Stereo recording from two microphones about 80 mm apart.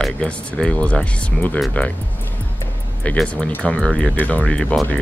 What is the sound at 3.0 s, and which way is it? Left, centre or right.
Speech, centre.